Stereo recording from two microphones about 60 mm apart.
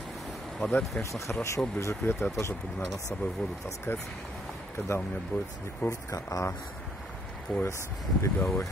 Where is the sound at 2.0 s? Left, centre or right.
Left.